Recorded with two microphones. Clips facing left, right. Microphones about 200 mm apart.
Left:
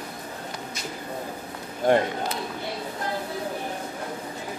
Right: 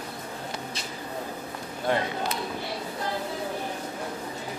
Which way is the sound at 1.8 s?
45° left (ahead or behind).